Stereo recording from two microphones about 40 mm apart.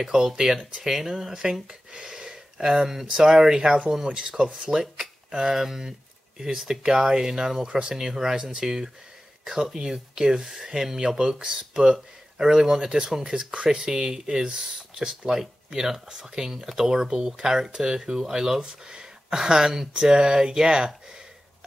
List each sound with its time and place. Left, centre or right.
0.0 s speech: centre
2.0 s a sound: centre
2.9 s speech: centre
13.4 s speech: right